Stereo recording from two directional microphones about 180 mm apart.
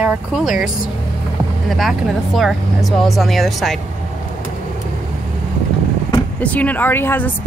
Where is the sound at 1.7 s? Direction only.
Centre (ahead or behind).